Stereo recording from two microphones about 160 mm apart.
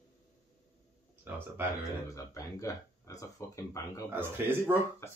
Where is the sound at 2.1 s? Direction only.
20° left (ahead or behind).